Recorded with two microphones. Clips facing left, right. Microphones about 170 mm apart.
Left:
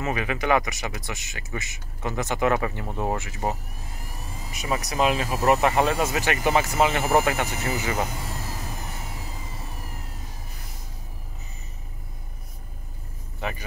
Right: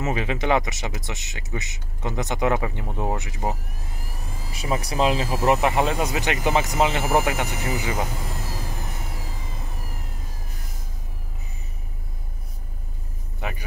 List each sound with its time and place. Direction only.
0.0 s speech: 25° right (ahead or behind)
4.5 s speech: 30° right (ahead or behind)
5.4 s speech: 15° right (ahead or behind)
13.4 s speech: 15° right (ahead or behind)